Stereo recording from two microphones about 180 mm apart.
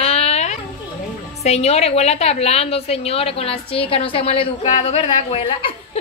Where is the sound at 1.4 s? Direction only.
35° left (ahead or behind).